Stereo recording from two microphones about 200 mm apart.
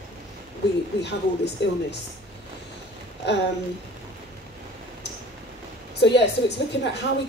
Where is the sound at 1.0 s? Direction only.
60° left (ahead or behind).